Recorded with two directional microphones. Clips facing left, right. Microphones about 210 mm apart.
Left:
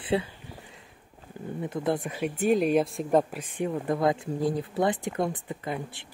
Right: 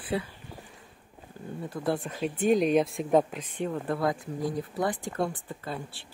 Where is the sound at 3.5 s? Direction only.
10° left (ahead or behind).